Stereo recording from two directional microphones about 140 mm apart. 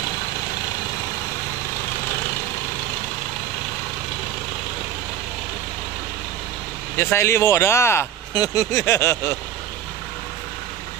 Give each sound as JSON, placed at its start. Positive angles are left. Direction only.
{"t": 7.0, "sound": "speech", "side_deg": 15}